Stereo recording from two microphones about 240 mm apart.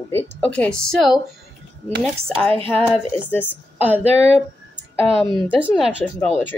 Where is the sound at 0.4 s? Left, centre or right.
Centre.